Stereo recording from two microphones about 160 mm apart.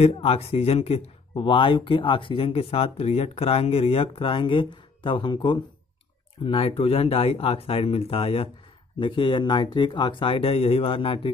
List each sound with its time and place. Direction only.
0.0 s speech: 40° left (ahead or behind)